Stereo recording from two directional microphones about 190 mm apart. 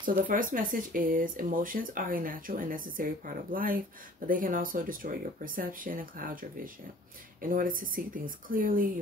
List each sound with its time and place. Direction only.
0.0 s speech: 45° right (ahead or behind)